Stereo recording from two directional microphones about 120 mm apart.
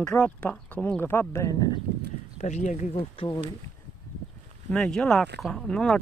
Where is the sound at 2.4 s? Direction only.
75° left (ahead or behind).